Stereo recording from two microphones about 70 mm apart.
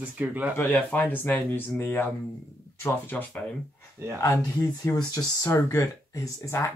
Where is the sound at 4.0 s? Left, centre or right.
Right.